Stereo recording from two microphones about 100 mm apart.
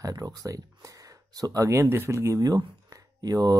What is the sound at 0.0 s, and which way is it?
Speech, 40° right (ahead or behind).